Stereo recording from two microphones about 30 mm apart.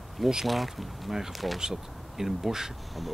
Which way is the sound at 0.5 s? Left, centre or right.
Centre.